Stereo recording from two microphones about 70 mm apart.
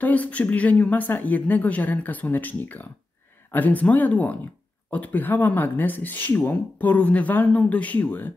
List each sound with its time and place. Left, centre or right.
0.0 s speech: left